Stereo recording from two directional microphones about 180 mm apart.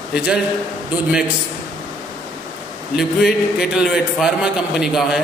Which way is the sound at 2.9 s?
Centre (ahead or behind).